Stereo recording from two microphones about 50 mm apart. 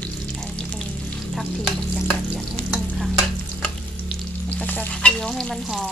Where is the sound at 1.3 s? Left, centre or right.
Centre.